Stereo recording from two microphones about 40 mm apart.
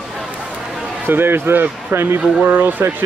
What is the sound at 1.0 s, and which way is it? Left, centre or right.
Speech, right.